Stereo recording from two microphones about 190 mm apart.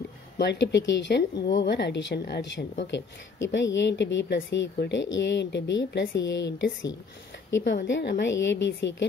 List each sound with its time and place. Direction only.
0.4 s speech: 60° left (ahead or behind)